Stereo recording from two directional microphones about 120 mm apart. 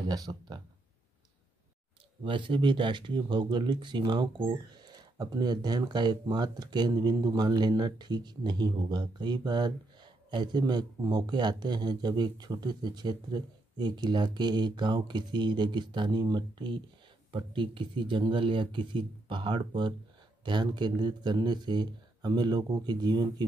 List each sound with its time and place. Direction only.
0.0 s speech: 35° right (ahead or behind)
2.2 s speech: 45° right (ahead or behind)